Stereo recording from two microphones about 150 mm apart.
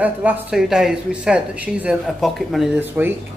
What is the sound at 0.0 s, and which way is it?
Speech, 10° right (ahead or behind).